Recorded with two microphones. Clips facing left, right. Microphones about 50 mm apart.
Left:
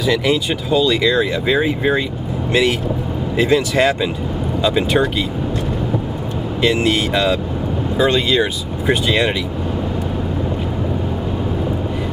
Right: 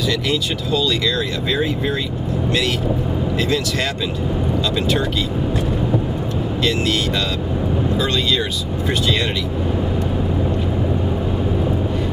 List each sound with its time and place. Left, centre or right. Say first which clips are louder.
0.0 s speech: left 4 dB; centre
3.3 s speech: left 8 dB; centre
6.6 s speech: left 4 dB; centre